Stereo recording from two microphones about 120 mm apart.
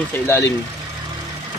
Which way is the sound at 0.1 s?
20° left (ahead or behind).